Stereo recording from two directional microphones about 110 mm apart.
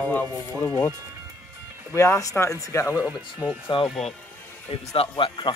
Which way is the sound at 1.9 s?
25° left (ahead or behind).